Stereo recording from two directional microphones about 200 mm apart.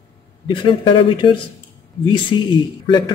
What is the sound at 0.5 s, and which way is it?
A man's voice, 25° left (ahead or behind).